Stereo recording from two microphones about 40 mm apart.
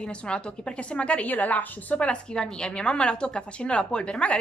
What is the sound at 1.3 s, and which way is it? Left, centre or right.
Speech, left.